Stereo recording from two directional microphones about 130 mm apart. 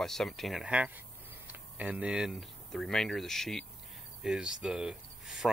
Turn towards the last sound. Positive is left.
turn(degrees=-5)  # may be behind; listen again after turning